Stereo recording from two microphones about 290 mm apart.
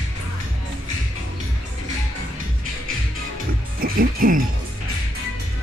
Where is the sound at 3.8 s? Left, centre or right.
Right.